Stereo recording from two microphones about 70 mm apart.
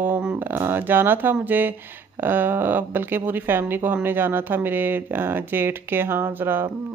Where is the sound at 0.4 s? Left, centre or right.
Right.